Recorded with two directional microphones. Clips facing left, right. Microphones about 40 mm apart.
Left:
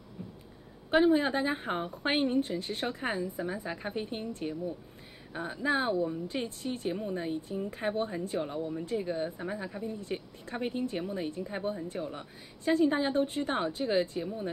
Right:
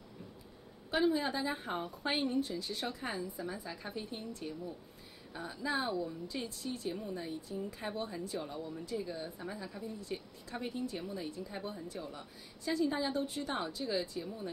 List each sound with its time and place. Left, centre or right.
0.9 s speech: left